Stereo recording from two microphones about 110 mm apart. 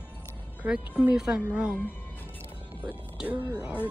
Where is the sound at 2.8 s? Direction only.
10° right (ahead or behind).